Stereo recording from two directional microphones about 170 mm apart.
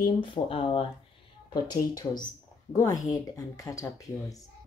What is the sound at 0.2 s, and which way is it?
Speech, 30° left (ahead or behind).